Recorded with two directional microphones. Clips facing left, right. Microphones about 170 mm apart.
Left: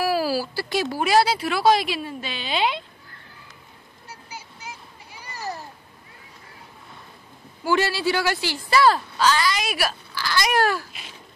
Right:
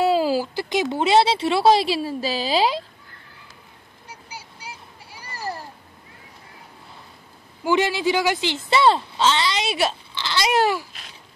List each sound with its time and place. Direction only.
0.0 s speech: 20° right (ahead or behind); by 2.8 s 35° right (ahead or behind)
5.1 s a sound: 10° right (ahead or behind)
7.6 s speech: 15° right (ahead or behind)